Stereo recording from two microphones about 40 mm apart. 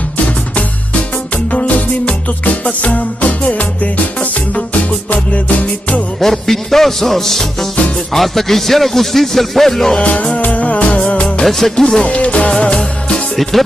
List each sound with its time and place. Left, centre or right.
1.5 s music: left
6.2 s music: centre
8.1 s speech: centre
10.0 s music: left
11.7 s music: centre
12.0 s music: left
12.5 s music: left
13.4 s speech: centre